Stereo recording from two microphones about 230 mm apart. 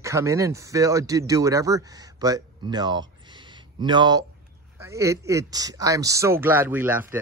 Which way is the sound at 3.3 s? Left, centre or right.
Centre.